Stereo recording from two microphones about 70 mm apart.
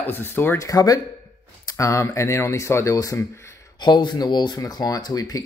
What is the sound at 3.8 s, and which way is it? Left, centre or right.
Speech, left.